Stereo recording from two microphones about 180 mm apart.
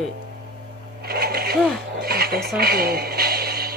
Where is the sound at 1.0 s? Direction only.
60° right (ahead or behind).